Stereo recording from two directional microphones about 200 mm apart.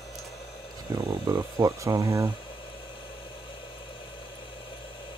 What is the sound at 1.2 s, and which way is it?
Speech, 15° right (ahead or behind).